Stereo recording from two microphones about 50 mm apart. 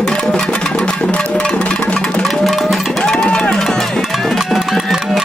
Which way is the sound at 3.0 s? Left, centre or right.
Centre.